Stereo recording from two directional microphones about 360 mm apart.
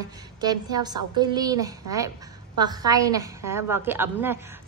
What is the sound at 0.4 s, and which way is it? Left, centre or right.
A woman's voice, centre.